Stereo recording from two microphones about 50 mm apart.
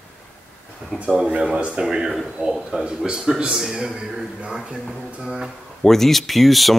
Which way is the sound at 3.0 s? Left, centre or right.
Centre.